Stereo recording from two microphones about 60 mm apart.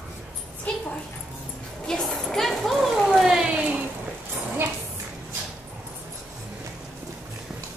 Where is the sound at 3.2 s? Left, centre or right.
Centre.